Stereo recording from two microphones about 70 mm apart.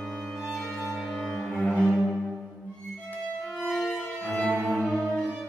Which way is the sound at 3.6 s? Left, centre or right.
Centre.